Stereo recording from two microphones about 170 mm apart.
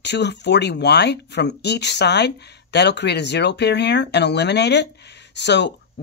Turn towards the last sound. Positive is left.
turn(degrees=90)